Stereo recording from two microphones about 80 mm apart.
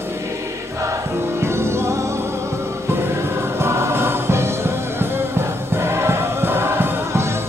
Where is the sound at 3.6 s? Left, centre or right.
Right.